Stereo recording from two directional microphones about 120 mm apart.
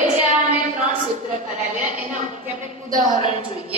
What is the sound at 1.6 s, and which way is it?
A woman's voice, 90° right.